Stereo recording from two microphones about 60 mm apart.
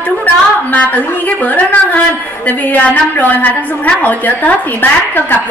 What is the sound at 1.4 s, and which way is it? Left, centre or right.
A woman's voice, left.